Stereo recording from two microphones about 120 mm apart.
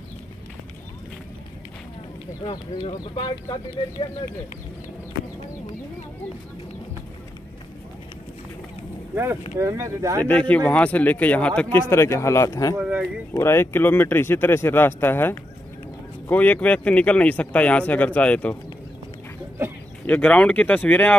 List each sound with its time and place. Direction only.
2.4 s speech: 40° left (ahead or behind)
9.1 s speech: 20° right (ahead or behind)
10.2 s speech: 10° left (ahead or behind)
11.9 s speech: 25° left (ahead or behind)
20.1 s speech: 10° left (ahead or behind)